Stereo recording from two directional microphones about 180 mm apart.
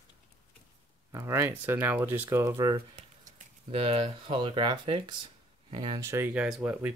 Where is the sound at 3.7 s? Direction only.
30° right (ahead or behind); by 6.8 s 5° right (ahead or behind).